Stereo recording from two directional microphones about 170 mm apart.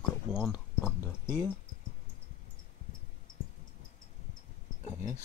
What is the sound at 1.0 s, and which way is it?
Speech, 15° left (ahead or behind).